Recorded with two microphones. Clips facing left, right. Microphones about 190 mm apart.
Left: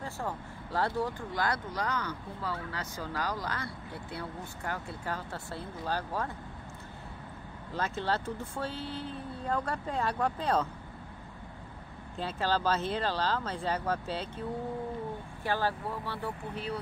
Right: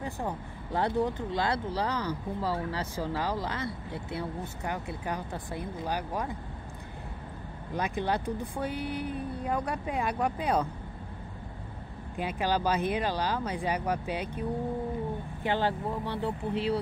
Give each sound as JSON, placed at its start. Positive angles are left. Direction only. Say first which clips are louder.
{"t": 0.0, "sound": "speech", "louder": "right 3 dB", "side_deg": -20}
{"t": 7.7, "sound": "speech", "louder": "right 2 dB", "side_deg": -15}
{"t": 12.2, "sound": "speech", "louder": "right 2 dB", "side_deg": -15}
{"t": 15.4, "sound": "speech", "louder": "right 3 dB", "side_deg": -20}